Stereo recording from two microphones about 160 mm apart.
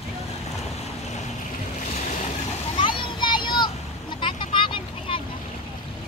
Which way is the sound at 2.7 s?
30° left (ahead or behind).